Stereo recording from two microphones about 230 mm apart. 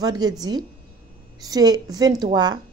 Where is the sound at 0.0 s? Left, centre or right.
Centre.